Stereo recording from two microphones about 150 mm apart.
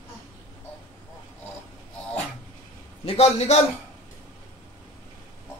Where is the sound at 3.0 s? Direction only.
45° left (ahead or behind).